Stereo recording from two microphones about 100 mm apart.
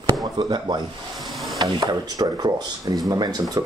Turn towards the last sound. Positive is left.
turn(degrees=-40)  # may be behind; listen again after turning